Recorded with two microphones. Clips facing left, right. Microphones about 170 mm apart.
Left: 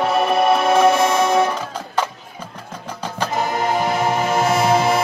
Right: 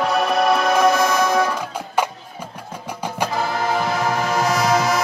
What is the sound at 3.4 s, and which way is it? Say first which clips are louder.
Music: left 3 dB; 20° left (ahead or behind).